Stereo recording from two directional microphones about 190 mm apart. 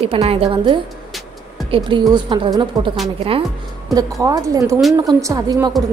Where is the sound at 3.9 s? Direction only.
20° right (ahead or behind).